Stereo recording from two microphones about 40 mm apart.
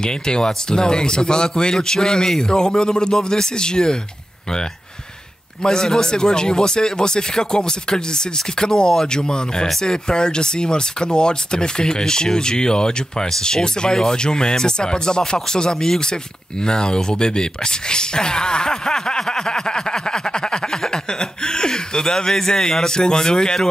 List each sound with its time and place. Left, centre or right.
0.0 s speech: centre
5.6 s speech: centre